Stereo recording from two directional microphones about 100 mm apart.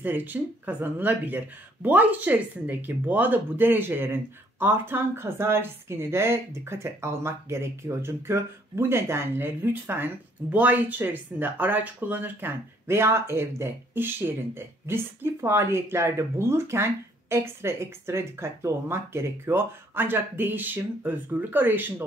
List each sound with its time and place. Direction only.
0.0 s speech: 20° right (ahead or behind)